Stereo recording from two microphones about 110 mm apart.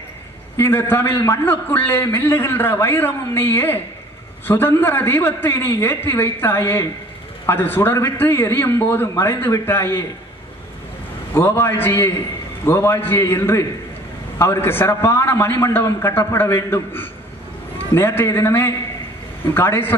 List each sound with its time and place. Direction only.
0.6 s a man's voice: 20° left (ahead or behind)
11.3 s a man's voice: 20° left (ahead or behind)